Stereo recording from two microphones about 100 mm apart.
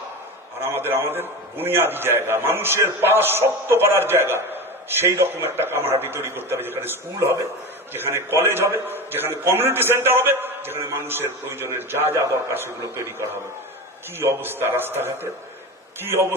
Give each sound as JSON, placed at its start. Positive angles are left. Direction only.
{"t": 0.7, "sound": "a man's voice", "side_deg": -25}